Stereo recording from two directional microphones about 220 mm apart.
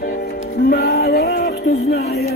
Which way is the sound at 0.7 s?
45° left (ahead or behind).